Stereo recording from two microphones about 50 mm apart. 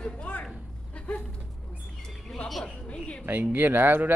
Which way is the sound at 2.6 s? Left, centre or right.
Centre.